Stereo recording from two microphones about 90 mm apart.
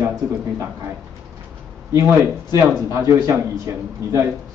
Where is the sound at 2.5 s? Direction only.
30° right (ahead or behind).